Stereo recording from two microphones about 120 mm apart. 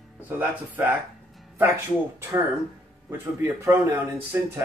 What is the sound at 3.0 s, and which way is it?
Speech, 20° right (ahead or behind).